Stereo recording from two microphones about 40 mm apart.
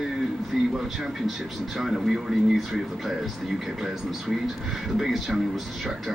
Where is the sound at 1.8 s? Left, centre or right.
Centre.